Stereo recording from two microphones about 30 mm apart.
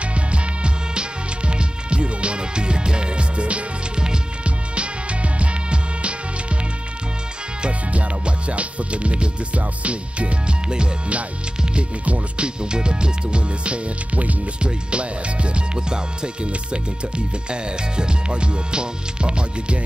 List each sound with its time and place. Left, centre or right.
1.5 s music: right
4.7 s music: right
8.5 s music: right
12.4 s speech: right
17.5 s speech: right